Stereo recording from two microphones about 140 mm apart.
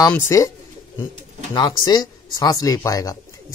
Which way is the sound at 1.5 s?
30° left (ahead or behind).